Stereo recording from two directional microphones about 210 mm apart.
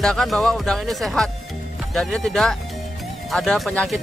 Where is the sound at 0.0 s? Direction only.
Centre (ahead or behind).